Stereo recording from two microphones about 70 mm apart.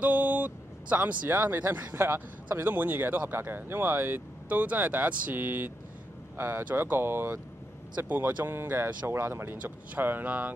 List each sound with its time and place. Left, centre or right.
0.0 s speech: right
4.5 s speech: right